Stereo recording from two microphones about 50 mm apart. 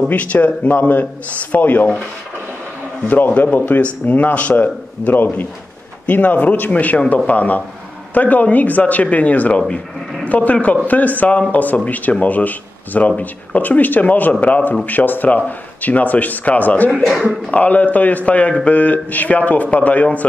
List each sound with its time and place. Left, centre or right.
0.1 s speech: left
3.1 s a man's voice: left